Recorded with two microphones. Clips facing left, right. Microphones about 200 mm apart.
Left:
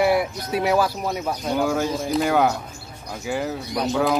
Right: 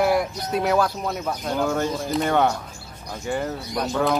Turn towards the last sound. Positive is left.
turn(degrees=5)  # may be behind; listen again after turning